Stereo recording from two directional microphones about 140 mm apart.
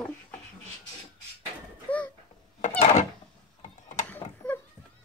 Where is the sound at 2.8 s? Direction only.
55° left (ahead or behind).